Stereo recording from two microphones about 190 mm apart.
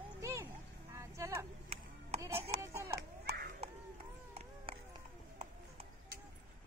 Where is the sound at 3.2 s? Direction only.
55° right (ahead or behind).